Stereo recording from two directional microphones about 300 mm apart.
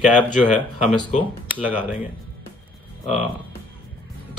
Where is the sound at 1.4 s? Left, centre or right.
Centre.